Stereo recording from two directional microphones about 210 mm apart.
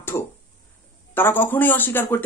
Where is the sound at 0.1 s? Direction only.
15° left (ahead or behind).